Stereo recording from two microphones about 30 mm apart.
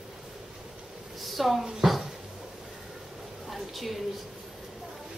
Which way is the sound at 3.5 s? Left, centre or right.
Centre.